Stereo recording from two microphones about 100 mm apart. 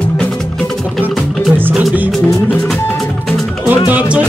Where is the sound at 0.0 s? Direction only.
10° left (ahead or behind).